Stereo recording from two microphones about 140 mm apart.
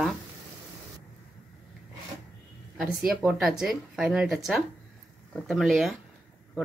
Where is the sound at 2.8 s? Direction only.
5° right (ahead or behind).